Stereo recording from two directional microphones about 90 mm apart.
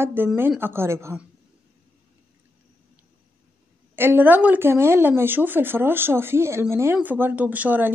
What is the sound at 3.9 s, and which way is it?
Speech, 25° right (ahead or behind).